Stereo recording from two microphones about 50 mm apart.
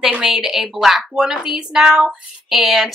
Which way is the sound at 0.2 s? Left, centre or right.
Centre.